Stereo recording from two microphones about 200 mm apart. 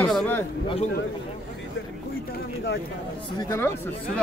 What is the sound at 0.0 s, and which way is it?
Speech, 10° left (ahead or behind).